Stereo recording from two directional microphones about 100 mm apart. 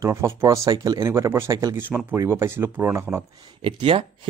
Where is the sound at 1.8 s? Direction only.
20° right (ahead or behind).